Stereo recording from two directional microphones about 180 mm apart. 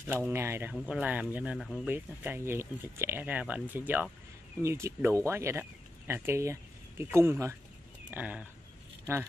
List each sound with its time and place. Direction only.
0.0 s speech: 10° right (ahead or behind)